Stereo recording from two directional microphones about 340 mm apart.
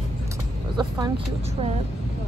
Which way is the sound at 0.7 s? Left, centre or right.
Centre.